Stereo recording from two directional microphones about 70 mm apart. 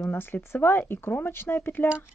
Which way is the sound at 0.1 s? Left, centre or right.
Left.